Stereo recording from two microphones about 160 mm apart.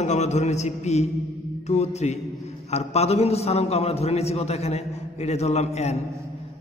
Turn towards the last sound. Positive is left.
turn(degrees=45)  # may be behind; listen again after turning